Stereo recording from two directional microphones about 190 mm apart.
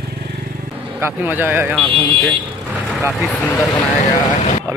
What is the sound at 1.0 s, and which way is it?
Speech, 10° right (ahead or behind).